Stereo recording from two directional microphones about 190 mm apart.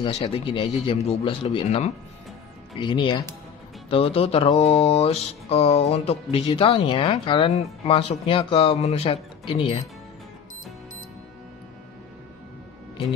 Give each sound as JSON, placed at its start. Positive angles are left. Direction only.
{"t": 0.0, "sound": "mantra", "side_deg": 35}
{"t": 2.7, "sound": "speech", "side_deg": 25}
{"t": 3.9, "sound": "mantra", "side_deg": 30}
{"t": 7.8, "sound": "speech", "side_deg": 30}